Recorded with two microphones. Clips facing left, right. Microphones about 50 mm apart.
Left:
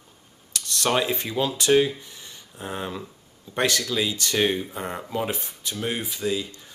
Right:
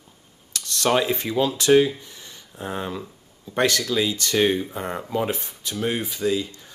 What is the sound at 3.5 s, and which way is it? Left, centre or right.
Speech, left.